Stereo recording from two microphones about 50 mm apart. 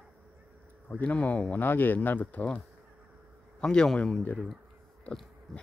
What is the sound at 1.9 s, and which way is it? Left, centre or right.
Speech, left.